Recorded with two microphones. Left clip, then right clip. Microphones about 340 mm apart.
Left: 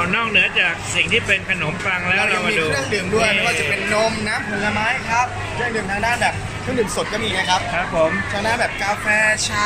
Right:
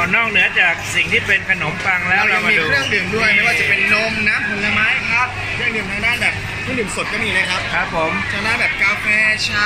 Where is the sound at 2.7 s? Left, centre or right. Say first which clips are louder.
Right 3 dB; left.